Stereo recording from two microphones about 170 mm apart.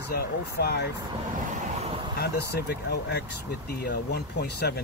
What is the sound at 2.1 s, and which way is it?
Speech, 70° left (ahead or behind).